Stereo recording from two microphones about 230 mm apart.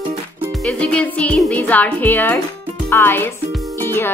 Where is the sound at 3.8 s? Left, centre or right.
Centre.